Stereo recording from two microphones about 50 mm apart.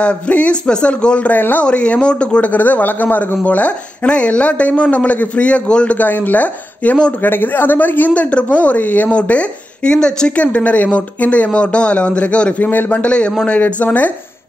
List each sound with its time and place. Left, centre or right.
0.0 s a woman's voice: left
1.3 s a woman's voice: left
1.7 s a woman's voice: left
2.4 s a woman's voice: left
5.9 s a woman's voice: left
7.2 s a woman's voice: left; by 10.3 s centre
10.3 s a woman's voice: left
12.5 s a woman's voice: left